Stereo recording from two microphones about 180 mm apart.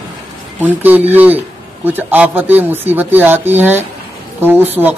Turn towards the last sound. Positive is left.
turn(degrees=-10)  # may be behind; listen again after turning